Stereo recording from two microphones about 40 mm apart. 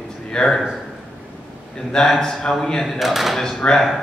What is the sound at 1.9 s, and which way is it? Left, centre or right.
Speech, centre.